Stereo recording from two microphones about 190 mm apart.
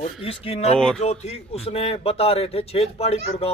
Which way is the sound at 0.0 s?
30° left (ahead or behind).